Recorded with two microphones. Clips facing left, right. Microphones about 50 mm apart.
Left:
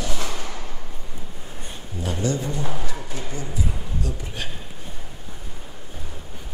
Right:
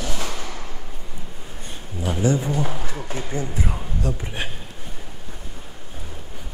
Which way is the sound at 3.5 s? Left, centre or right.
Right.